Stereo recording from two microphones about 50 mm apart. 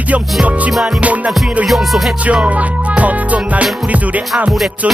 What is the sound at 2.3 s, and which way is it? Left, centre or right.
Music, right.